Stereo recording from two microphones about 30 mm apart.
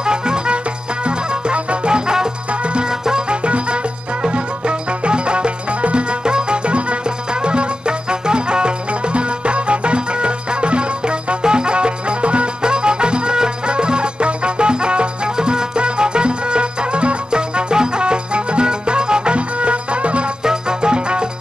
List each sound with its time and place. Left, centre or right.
0.0 s music: right
1.0 s music: right
6.2 s music: right
19.3 s music: right
20.4 s music: right